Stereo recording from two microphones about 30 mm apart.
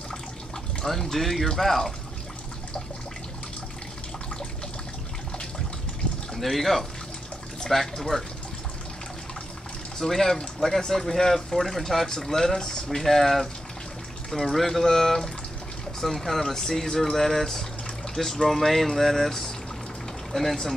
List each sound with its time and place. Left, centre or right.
0.8 s speech: centre
6.4 s speech: centre
8.1 s speech: left
9.9 s speech: centre
13.0 s speech: centre